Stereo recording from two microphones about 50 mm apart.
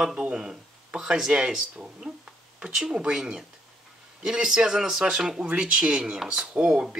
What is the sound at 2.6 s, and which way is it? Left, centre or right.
Speech, centre.